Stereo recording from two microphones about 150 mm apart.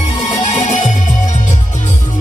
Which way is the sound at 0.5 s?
55° left (ahead or behind).